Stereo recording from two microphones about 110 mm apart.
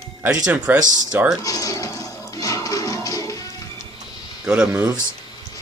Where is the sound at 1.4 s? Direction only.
30° left (ahead or behind).